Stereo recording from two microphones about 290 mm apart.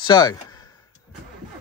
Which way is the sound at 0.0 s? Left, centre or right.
Centre.